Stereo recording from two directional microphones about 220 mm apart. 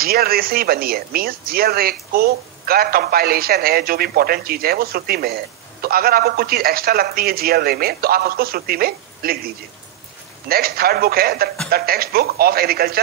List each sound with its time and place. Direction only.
0.0 s speech: 45° right (ahead or behind)
10.5 s speech: 45° right (ahead or behind)